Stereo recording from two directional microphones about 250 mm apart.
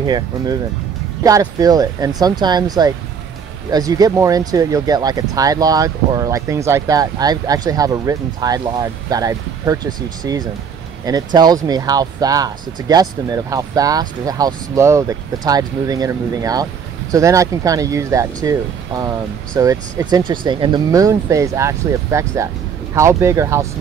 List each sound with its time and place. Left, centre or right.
0.0 s speech: centre